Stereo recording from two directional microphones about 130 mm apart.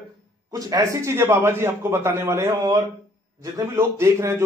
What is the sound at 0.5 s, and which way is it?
A man's voice, 30° right (ahead or behind).